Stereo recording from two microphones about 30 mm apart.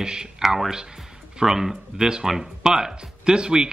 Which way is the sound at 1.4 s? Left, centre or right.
Centre.